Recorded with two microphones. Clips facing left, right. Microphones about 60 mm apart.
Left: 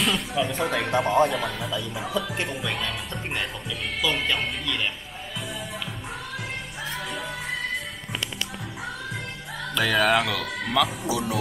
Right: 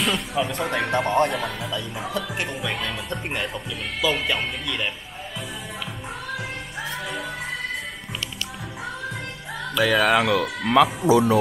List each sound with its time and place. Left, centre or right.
0.0 s speech: centre
0.9 s speech: centre
4.0 s speech: centre
9.8 s speech: centre
10.2 s speech: centre
10.7 s speech: right